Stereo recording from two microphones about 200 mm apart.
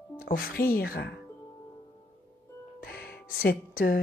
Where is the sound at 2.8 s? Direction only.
50° left (ahead or behind).